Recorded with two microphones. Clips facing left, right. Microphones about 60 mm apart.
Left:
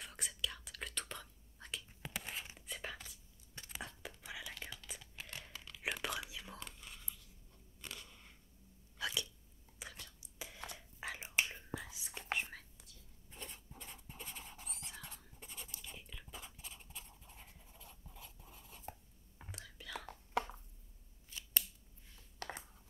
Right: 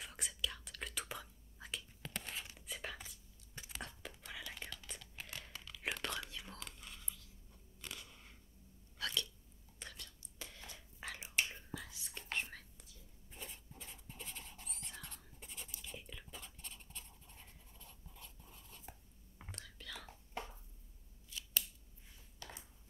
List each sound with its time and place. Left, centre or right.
0.0 s whispering: centre
2.1 s writing: centre
2.6 s whispering: centre
3.1 s a sound: centre
3.7 s whispering: centre
4.2 s a sound: centre
7.8 s biting: centre
8.9 s hiccup: centre
9.8 s whispering: centre
20.4 s a sound: left
21.3 s scissors: left
22.4 s a sound: left